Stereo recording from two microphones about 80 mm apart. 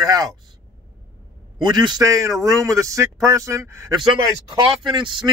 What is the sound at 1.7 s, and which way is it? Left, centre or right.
Speech, right.